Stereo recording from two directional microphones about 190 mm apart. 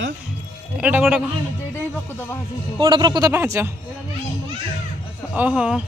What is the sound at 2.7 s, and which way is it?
Speech, 25° right (ahead or behind).